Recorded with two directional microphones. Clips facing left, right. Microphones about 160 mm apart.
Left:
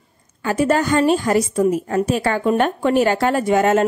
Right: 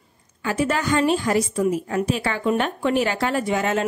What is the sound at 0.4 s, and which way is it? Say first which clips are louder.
A woman's voice: left 5 dB; 45° left (ahead or behind).